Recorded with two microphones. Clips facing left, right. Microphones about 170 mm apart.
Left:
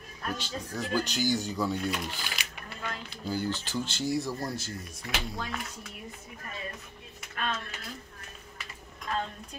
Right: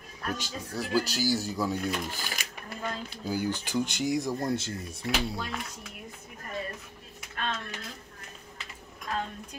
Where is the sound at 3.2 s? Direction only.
10° right (ahead or behind).